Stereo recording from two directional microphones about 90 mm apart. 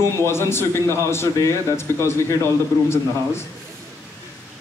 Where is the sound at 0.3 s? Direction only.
30° left (ahead or behind).